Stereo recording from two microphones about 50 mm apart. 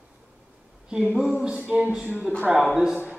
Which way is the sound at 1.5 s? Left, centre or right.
Right.